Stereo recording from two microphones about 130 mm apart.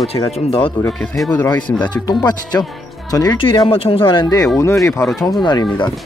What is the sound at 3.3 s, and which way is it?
Speech, 40° left (ahead or behind).